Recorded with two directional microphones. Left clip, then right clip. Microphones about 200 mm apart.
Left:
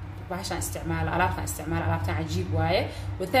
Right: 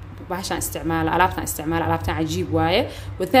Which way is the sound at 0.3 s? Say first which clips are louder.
Right 6 dB; 50° right (ahead or behind).